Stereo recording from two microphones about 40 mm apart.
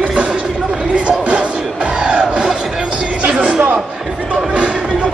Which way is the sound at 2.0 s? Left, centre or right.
Right.